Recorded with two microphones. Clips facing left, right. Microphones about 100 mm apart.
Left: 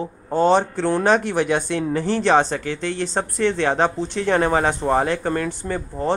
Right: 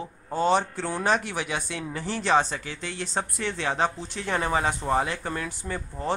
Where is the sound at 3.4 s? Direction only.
70° left (ahead or behind).